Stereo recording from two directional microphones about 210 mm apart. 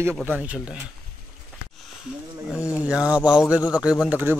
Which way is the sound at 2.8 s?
5° right (ahead or behind).